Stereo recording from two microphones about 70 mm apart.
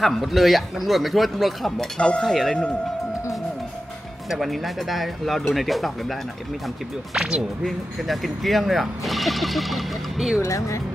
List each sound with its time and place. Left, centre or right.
0.0 s speech: centre
2.0 s cutlery: centre
2.2 s speech: centre
4.3 s speech: centre
7.2 s speech: centre
10.4 s speech: left